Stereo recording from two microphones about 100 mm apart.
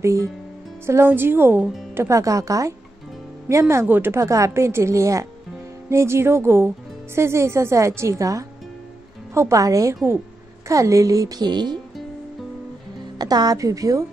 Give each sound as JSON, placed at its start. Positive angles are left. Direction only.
{"t": 0.0, "sound": "a woman's voice", "side_deg": -30}
{"t": 13.2, "sound": "a woman's voice", "side_deg": -40}